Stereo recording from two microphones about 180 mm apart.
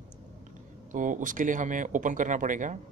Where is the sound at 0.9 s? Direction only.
45° right (ahead or behind).